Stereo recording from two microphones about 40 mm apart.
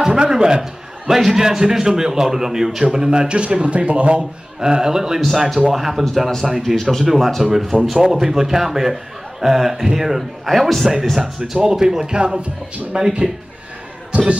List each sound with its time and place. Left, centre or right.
0.0 s a man's voice: centre
0.6 s a man's voice: centre; by 4.2 s right
4.2 s a man's voice: centre
6.6 s a man's voice: centre; by 13.1 s right
14.1 s basketball bounce: right